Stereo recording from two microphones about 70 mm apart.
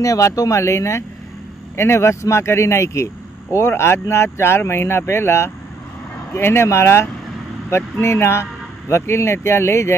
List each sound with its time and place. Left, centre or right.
0.0 s a man's voice: left